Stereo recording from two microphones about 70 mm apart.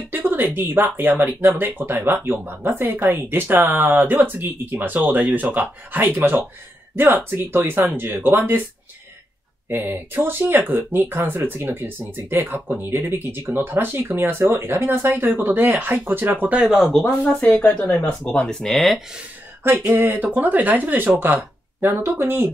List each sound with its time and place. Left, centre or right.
0.1 s a sound: right
0.6 s speech: right
9.7 s speech: right
16.6 s speech: centre
17.3 s speech: centre
19.6 s speech: right
20.1 s speech: right